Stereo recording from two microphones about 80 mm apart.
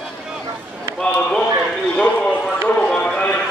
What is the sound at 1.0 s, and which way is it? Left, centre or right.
Run, centre.